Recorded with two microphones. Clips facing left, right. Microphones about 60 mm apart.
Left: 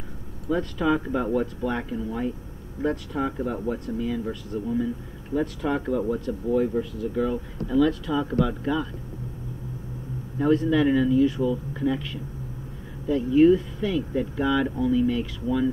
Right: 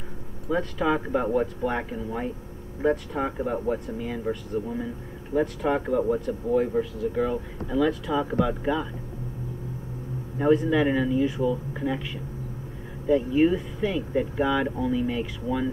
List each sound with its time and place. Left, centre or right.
0.5 s speech: centre
4.0 s speech: right
10.4 s speech: centre